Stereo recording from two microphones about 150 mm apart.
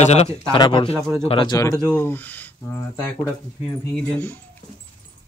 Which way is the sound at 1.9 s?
10° left (ahead or behind).